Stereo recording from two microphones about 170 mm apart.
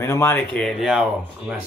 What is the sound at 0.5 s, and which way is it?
Speech, 5° left (ahead or behind).